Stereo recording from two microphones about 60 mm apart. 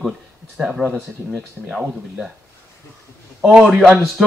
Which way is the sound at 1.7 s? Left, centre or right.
Centre.